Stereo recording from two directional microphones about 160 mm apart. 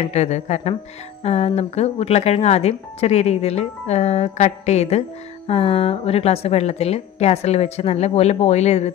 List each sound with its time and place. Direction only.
0.0 s speech: 45° left (ahead or behind)